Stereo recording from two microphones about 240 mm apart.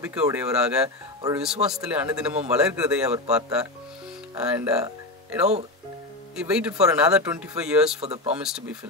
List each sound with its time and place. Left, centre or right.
0.0 s speech: centre
0.8 s speech: centre
1.4 s speech: centre
4.4 s speech: centre
8.0 s speech: right
8.4 s speech: centre